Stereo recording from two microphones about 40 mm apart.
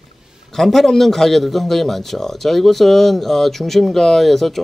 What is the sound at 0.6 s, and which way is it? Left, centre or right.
A man's voice, centre.